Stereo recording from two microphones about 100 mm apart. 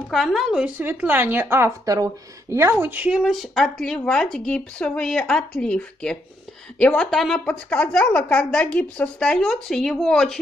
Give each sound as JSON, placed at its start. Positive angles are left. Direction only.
{"t": 0.1, "sound": "a woman's voice", "side_deg": 0}
{"t": 0.7, "sound": "speech", "side_deg": -20}
{"t": 7.4, "sound": "speech", "side_deg": 15}